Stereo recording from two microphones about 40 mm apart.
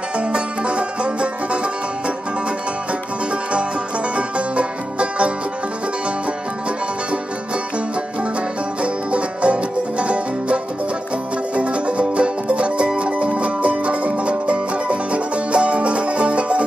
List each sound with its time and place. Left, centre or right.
0.2 s music: right
4.1 s music: right
8.8 s music: right